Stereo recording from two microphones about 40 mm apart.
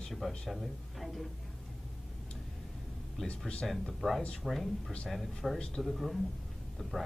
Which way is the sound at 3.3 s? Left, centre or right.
Left.